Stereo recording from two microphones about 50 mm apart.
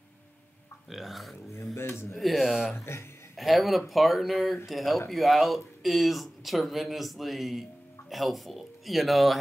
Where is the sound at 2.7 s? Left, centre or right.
Left.